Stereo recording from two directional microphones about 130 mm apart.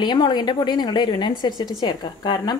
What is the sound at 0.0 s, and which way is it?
Speech, 35° left (ahead or behind).